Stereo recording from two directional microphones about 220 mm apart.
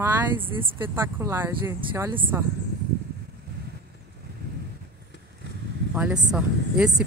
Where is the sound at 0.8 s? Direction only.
10° right (ahead or behind).